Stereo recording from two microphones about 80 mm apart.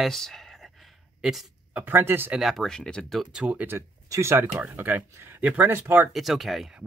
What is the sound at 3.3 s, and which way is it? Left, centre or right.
Speech, centre.